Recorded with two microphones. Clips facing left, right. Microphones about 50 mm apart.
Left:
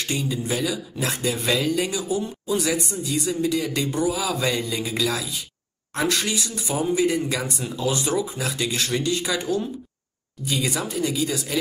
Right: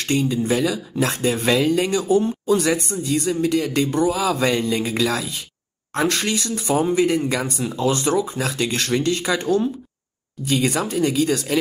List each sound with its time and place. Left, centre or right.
0.0 s speech: right